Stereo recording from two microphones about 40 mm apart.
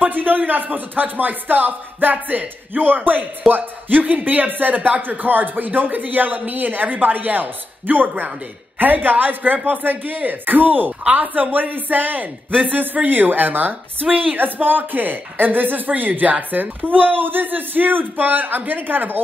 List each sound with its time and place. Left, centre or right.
0.0 s speech: right
14.0 s speech: right
14.3 s speech: right